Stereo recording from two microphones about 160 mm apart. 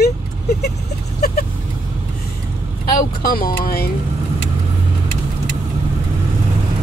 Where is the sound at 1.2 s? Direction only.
80° left.